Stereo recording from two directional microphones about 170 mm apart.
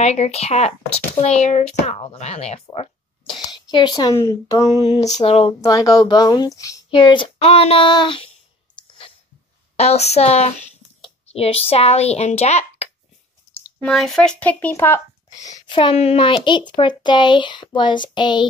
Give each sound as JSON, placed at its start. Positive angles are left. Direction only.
{"t": 0.0, "sound": "speech", "side_deg": 40}
{"t": 2.7, "sound": "a sound", "side_deg": 35}
{"t": 3.5, "sound": "speech", "side_deg": 25}
{"t": 5.0, "sound": "speech", "side_deg": 40}
{"t": 5.6, "sound": "speech", "side_deg": 20}
{"t": 8.7, "sound": "sneeze", "side_deg": 30}
{"t": 9.8, "sound": "speech", "side_deg": 40}
{"t": 13.5, "sound": "speech", "side_deg": 10}
{"t": 15.6, "sound": "speech", "side_deg": 30}